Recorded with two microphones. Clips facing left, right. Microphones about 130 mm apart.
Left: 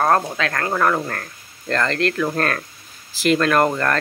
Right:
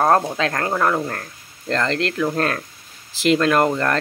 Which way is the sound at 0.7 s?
10° right (ahead or behind).